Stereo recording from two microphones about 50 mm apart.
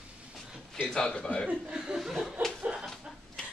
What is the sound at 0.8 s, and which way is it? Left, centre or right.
Speech, centre.